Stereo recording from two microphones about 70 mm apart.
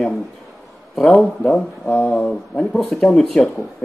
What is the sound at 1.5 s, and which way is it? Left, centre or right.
Speech, left.